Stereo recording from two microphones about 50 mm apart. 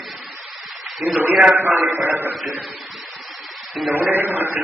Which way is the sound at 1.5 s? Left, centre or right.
Right.